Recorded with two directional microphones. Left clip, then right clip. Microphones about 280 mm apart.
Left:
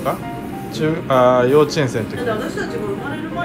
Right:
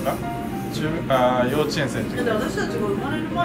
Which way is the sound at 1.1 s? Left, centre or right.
Left.